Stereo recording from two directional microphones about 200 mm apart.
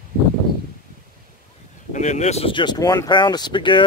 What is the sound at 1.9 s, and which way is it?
Speech, 35° left (ahead or behind).